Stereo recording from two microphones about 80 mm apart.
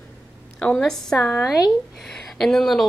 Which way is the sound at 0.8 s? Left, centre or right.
Centre.